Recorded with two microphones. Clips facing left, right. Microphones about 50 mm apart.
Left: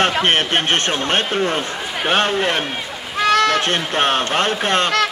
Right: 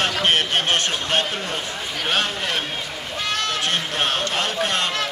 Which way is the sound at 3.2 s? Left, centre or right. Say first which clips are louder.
Left 10 dB; left.